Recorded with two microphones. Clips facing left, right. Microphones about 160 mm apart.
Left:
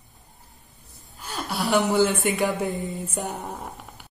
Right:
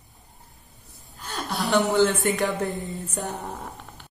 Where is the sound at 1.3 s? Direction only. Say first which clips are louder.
Even; 5° left (ahead or behind).